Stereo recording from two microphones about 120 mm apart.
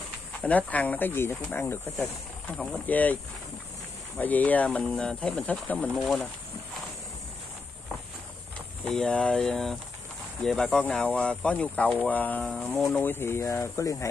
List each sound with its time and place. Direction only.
0.4 s speech: 10° left (ahead or behind)
2.4 s speech: 5° left (ahead or behind)
2.9 s speech: 15° left (ahead or behind)
4.2 s speech: 15° left (ahead or behind)
5.9 s speech: centre (ahead or behind)
8.8 s speech: 5° left (ahead or behind); by 14.0 s 25° left (ahead or behind)